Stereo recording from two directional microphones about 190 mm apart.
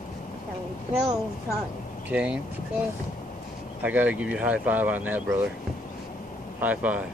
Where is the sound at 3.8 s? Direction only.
10° right (ahead or behind).